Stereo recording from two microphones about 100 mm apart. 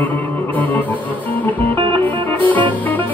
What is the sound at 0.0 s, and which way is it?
Music, 15° left (ahead or behind).